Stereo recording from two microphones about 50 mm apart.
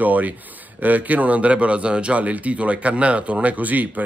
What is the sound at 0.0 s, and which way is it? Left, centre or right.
A man's voice, right.